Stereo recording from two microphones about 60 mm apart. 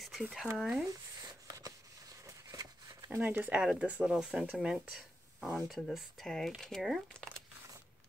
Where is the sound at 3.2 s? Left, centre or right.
Right.